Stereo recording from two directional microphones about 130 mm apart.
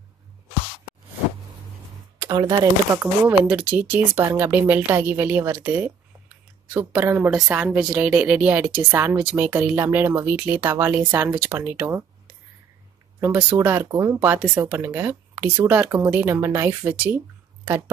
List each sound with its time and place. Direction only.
2.1 s a sound: 25° right (ahead or behind)
2.9 s speech: 15° right (ahead or behind)
13.2 s speech: 15° right (ahead or behind)